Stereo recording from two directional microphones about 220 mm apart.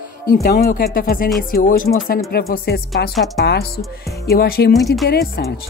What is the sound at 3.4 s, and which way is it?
Speech, 45° left (ahead or behind).